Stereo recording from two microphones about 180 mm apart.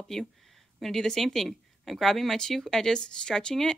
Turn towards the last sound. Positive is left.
turn(degrees=5)  # may be behind; listen again after turning